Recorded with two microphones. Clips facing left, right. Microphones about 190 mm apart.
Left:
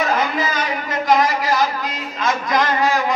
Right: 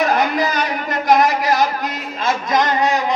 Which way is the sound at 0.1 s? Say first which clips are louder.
Right 3 dB; 70° right (ahead or behind).